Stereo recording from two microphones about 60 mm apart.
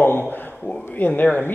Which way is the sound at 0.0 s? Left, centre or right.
Left.